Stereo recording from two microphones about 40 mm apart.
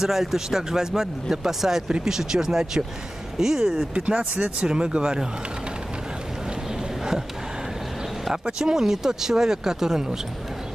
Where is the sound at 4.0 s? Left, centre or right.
Right.